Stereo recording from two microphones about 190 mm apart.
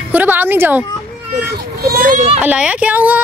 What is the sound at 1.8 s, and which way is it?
Speech, 55° right (ahead or behind).